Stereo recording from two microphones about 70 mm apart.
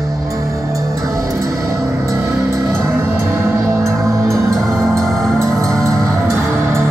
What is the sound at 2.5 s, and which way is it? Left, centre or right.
Music, right.